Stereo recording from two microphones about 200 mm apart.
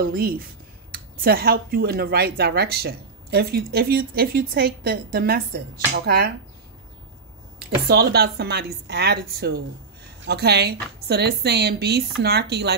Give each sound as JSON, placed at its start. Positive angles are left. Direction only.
{"t": 0.0, "sound": "speech", "side_deg": -50}
{"t": 7.5, "sound": "a woman's voice", "side_deg": -55}